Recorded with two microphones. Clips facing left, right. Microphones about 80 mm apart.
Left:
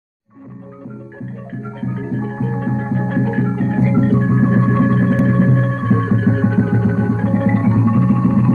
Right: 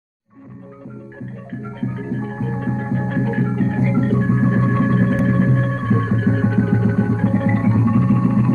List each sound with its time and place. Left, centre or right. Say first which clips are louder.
1.7 s music: left 2 dB; left